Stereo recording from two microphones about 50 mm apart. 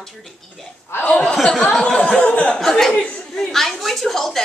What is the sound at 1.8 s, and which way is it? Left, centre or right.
Speech, centre.